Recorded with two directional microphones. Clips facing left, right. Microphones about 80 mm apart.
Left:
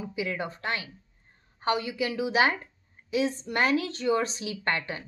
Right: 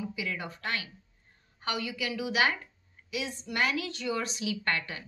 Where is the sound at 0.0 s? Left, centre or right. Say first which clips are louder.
Left 4 dB; left.